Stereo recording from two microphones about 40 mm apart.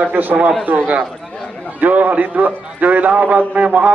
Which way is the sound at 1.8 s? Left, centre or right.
Right.